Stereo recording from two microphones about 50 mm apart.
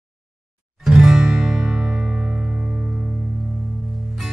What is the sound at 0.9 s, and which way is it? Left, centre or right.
Music, centre.